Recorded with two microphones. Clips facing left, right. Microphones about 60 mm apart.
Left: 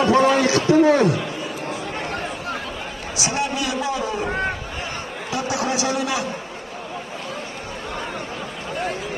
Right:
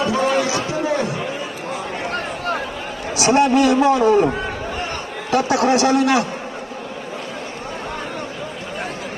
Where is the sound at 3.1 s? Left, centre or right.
Right.